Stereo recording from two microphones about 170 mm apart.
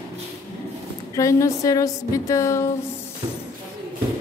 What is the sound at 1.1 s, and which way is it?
A woman's voice, 20° left (ahead or behind).